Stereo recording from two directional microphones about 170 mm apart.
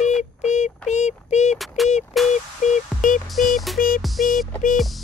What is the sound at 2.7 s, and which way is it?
Music, 50° left (ahead or behind).